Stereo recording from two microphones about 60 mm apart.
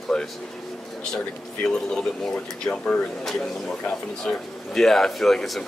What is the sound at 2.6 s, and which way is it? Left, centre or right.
Speech, centre.